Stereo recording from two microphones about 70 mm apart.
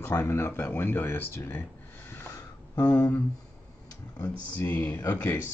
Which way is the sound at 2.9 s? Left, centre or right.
Centre.